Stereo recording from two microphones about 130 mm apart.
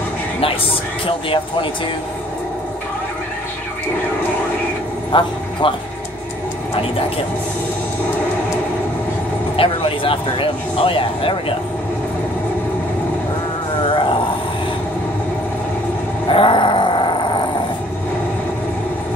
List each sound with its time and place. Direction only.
1.0 s speech: 45° left (ahead or behind)
5.1 s speech: 40° left (ahead or behind)
9.6 s speech: 45° left (ahead or behind)
13.8 s a sound: 40° left (ahead or behind)
16.3 s grunt: 40° left (ahead or behind)